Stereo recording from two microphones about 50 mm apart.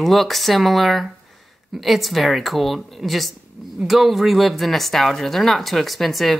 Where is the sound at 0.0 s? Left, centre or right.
Centre.